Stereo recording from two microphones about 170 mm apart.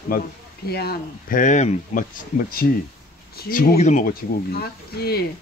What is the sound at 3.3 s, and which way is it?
Speech, 65° left (ahead or behind).